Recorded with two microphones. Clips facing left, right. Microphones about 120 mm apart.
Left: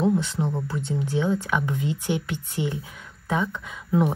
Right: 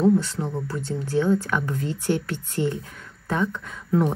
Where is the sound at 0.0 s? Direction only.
5° left (ahead or behind).